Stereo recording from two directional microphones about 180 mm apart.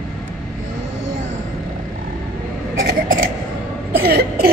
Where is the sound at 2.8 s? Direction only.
50° right (ahead or behind).